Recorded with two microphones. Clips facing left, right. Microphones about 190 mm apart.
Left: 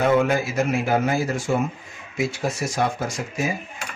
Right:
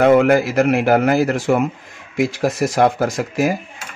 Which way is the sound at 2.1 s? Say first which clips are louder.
Right 7 dB; 85° right.